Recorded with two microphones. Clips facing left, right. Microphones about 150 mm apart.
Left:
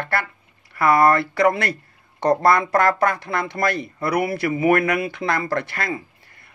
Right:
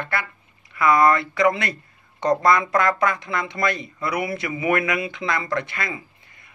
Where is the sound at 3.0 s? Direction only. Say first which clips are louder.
Left 2 dB; 60° left (ahead or behind).